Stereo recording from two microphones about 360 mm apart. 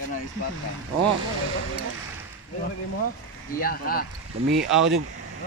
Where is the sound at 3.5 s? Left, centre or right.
Left.